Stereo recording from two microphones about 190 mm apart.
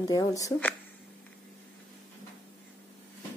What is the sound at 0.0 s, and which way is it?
Speech, 20° left (ahead or behind).